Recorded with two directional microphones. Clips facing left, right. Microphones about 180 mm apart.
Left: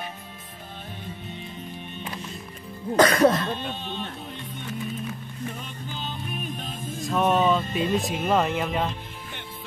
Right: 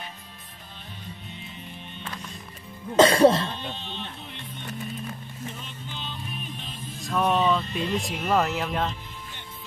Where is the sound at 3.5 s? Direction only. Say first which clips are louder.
Left 5 dB; 50° left (ahead or behind).